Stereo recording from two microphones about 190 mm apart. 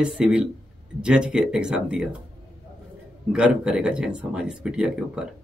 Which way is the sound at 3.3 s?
5° right (ahead or behind).